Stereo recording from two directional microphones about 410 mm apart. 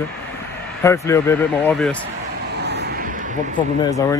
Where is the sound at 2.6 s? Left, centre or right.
Right.